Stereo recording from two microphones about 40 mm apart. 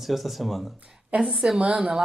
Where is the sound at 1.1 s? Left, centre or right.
Right.